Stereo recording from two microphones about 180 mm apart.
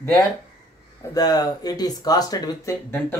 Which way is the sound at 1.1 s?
20° left (ahead or behind).